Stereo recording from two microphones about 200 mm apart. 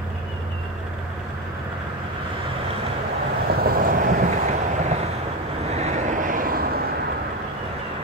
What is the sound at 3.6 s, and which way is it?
Vehicle, 45° right (ahead or behind).